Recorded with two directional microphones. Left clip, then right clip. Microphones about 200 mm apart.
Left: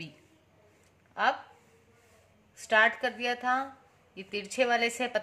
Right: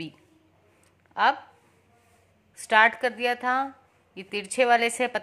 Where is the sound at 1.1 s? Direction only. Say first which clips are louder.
Right 5 dB; 40° right (ahead or behind).